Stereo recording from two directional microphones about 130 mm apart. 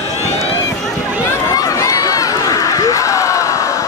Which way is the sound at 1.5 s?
25° left (ahead or behind).